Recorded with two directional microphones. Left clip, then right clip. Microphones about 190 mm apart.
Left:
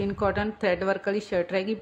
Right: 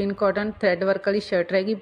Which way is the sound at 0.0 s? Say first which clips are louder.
Right 4 dB; 15° right (ahead or behind).